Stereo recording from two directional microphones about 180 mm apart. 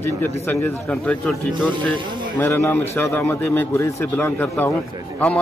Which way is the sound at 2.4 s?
15° left (ahead or behind).